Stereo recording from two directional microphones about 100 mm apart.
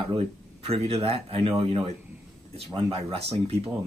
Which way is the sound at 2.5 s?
80° right.